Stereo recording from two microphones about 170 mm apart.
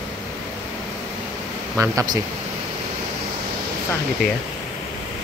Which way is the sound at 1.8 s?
20° right (ahead or behind).